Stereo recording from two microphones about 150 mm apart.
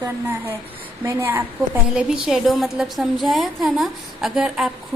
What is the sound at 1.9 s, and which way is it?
A woman's voice, 5° right (ahead or behind).